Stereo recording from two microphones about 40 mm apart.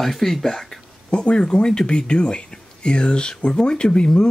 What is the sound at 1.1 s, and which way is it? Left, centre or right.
Speech, left.